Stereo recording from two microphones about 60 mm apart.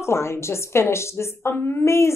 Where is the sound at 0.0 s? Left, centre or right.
Left.